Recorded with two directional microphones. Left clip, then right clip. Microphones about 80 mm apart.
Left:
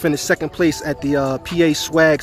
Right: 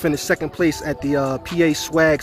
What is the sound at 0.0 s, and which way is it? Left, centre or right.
Speech, left.